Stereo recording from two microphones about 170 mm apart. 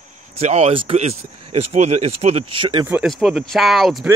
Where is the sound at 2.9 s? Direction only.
5° right (ahead or behind).